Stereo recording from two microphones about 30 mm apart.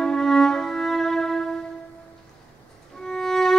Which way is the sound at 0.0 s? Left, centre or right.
Centre.